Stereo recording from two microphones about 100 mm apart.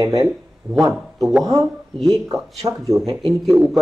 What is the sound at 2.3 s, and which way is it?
Speech, 35° right (ahead or behind).